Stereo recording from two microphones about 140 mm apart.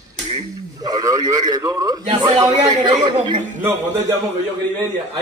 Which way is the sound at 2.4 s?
30° right (ahead or behind).